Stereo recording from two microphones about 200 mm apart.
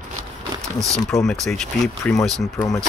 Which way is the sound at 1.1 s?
Centre (ahead or behind).